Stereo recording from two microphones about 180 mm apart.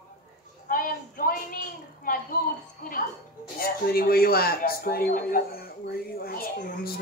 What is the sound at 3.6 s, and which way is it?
Speech, 55° left (ahead or behind).